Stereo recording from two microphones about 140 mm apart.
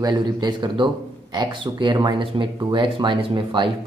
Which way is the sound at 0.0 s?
30° right (ahead or behind).